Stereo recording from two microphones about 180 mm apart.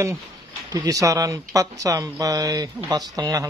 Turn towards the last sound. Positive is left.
turn(degrees=-20)  # may be behind; listen again after turning